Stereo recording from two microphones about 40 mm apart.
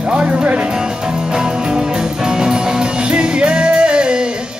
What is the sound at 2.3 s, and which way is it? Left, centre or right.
Music, centre.